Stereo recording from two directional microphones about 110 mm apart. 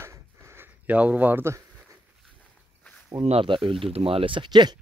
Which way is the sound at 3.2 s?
55° right (ahead or behind).